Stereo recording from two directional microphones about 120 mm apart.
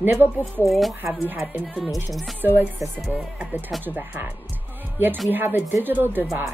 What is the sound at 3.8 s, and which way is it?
Speech, 15° right (ahead or behind).